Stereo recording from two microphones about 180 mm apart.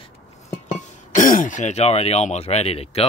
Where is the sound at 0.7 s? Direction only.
45° left (ahead or behind).